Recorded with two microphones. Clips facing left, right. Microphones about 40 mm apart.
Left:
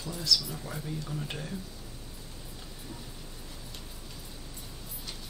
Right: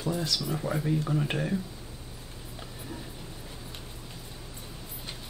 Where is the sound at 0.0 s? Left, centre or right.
Right.